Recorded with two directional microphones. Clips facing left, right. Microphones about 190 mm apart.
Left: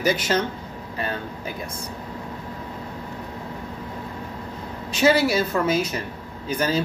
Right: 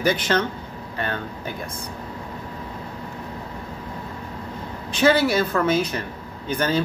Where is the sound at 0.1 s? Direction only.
10° left (ahead or behind).